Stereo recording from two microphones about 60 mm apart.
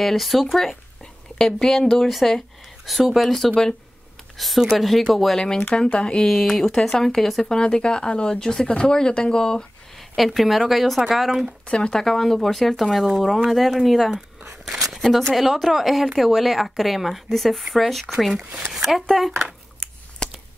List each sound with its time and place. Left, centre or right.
0.0 s speech: centre
10.1 s speech: centre
11.6 s speech: centre
11.9 s speech: centre
20.2 s a sound: centre